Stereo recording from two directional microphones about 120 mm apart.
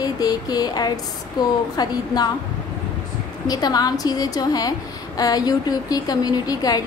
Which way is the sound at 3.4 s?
35° left (ahead or behind).